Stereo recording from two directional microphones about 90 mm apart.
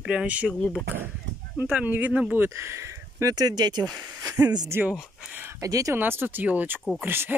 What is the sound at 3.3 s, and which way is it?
Speech, 50° right (ahead or behind).